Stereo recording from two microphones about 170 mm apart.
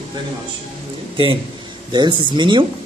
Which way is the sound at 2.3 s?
30° right (ahead or behind).